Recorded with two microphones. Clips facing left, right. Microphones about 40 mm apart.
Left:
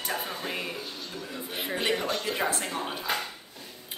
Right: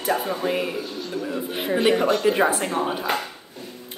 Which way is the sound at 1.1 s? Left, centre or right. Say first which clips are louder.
Right 10 dB; right.